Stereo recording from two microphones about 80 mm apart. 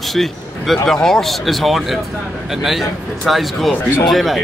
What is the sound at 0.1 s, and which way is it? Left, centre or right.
A man's voice, centre.